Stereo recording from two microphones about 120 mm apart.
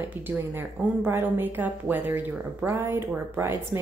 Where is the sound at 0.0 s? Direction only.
15° right (ahead or behind).